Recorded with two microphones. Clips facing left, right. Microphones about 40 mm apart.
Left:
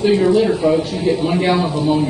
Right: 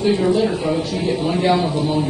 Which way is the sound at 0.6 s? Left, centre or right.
Centre.